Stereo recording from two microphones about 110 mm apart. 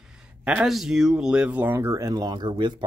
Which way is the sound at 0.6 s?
5° right (ahead or behind).